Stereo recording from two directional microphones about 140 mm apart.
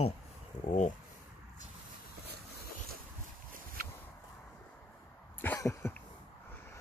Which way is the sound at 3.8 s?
90° right.